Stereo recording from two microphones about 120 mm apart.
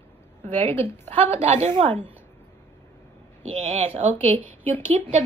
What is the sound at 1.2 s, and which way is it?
Speech, 65° right (ahead or behind).